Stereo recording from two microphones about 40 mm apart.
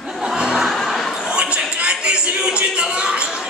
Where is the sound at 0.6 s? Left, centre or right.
Centre.